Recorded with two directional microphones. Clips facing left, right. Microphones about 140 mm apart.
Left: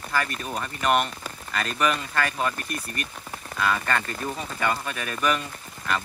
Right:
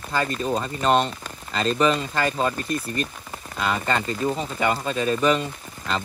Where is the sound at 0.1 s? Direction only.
25° right (ahead or behind).